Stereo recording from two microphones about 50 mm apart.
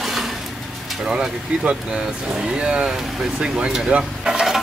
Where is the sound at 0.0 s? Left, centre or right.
Centre.